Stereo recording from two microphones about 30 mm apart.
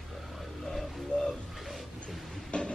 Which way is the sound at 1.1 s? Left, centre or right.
Left.